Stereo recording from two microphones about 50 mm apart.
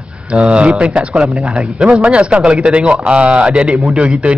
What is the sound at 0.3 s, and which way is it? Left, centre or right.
A man's voice, right.